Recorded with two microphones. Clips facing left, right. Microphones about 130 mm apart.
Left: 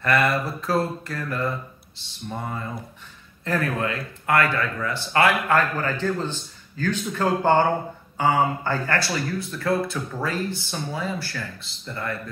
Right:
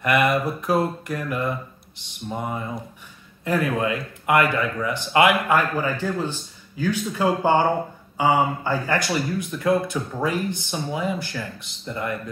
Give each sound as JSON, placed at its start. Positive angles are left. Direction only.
{"t": 0.0, "sound": "speech", "side_deg": -15}